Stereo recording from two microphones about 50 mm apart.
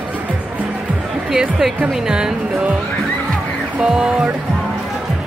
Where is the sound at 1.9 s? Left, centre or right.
Centre.